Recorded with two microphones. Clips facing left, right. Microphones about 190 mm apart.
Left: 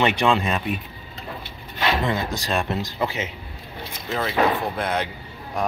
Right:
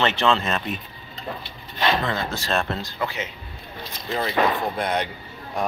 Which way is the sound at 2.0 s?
15° left (ahead or behind).